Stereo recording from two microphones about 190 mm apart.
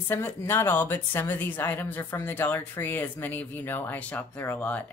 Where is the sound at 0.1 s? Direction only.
10° left (ahead or behind).